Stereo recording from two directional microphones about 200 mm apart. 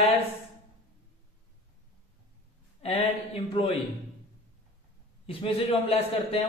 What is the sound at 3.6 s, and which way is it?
Speech, 25° left (ahead or behind).